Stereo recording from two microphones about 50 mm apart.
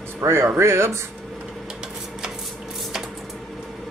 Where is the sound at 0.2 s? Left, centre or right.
Right.